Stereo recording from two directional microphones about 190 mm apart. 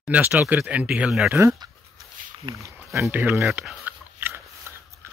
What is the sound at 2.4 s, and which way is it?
Speech, 15° right (ahead or behind).